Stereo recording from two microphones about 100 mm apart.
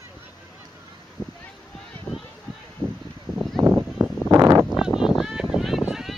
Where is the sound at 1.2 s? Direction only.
35° left (ahead or behind).